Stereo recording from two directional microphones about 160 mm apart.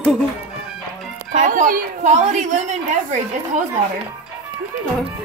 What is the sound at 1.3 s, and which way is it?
A woman's voice, 50° right (ahead or behind).